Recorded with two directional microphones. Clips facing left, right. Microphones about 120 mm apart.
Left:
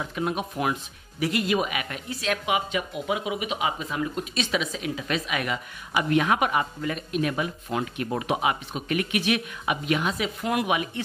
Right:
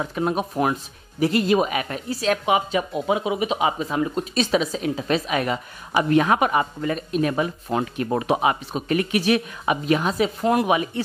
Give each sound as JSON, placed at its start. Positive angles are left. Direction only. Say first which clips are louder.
{"t": 0.0, "sound": "speech", "louder": "right 5 dB", "side_deg": -35}